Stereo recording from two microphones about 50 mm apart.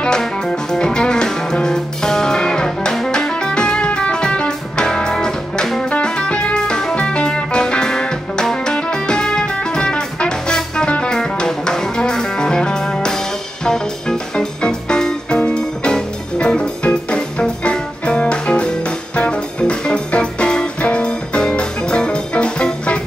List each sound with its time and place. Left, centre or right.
0.0 s music: centre